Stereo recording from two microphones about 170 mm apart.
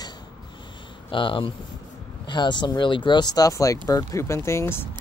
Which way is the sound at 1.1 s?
30° left (ahead or behind).